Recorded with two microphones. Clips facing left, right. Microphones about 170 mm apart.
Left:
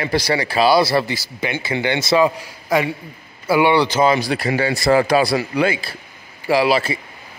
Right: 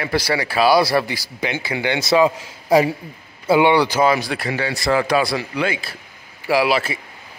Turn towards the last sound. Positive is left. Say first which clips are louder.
# left 2 dB
turn(degrees=-5)  # may be behind; listen again after turning